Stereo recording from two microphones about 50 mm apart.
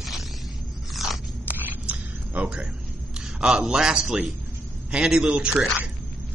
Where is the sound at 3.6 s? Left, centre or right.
Centre.